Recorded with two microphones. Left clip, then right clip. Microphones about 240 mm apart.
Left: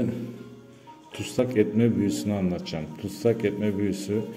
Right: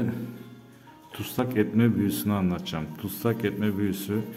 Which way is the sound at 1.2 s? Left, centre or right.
Centre.